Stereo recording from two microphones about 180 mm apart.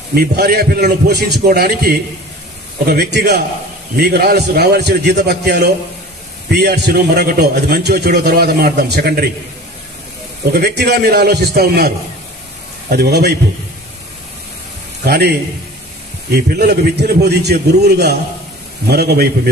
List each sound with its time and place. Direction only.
0.1 s a man's voice: 60° right (ahead or behind)
10.5 s a man's voice: 65° right (ahead or behind)
12.9 s a man's voice: 65° right (ahead or behind)
15.0 s a man's voice: 60° right (ahead or behind)